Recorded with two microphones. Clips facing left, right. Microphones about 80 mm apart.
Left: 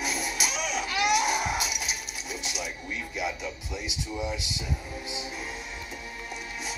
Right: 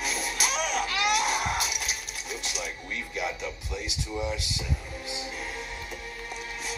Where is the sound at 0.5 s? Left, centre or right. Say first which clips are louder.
Right 2 dB; right.